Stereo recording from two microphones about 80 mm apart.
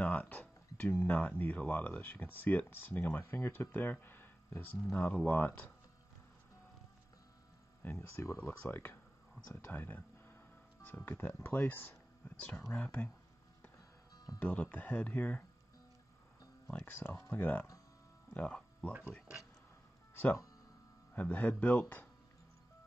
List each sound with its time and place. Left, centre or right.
0.0 s a sound: centre
0.7 s speech: centre
7.8 s speech: left
8.4 s speech: left
12.7 s speech: centre
14.4 s speech: centre
16.7 s speech: left
21.1 s speech: left